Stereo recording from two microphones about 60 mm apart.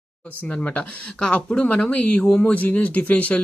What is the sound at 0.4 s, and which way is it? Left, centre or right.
Speech, left.